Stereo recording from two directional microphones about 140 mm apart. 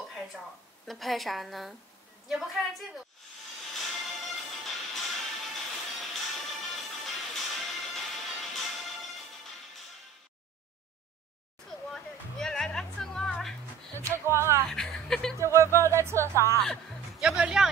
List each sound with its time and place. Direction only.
0.8 s a woman's voice: centre (ahead or behind)
3.7 s music: centre (ahead or behind)
11.9 s music: 5° left (ahead or behind)
14.0 s music: 20° right (ahead or behind)
14.7 s chuckle: 5° left (ahead or behind)
15.3 s music: 20° right (ahead or behind)
17.2 s music: 5° right (ahead or behind)